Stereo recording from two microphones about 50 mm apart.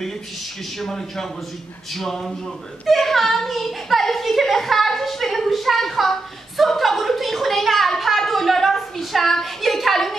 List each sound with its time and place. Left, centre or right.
0.7 s a man's voice: centre